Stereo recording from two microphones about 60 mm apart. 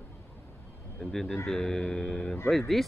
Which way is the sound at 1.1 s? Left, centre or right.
Centre.